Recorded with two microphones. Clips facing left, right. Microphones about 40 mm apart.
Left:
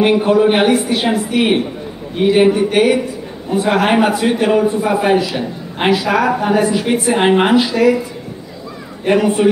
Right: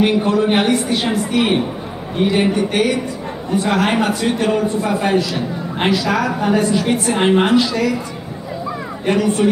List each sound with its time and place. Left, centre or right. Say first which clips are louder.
0.0 s a man's voice: left 4 dB; centre
9.0 s a man's voice: left 3 dB; centre